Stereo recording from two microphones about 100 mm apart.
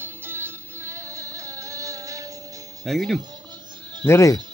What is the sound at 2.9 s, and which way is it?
Speech, centre (ahead or behind).